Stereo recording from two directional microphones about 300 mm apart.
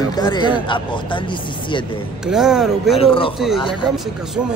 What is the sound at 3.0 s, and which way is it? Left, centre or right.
Speech, centre.